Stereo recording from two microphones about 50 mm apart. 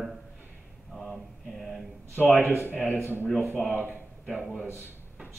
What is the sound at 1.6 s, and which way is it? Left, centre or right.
Speech, centre.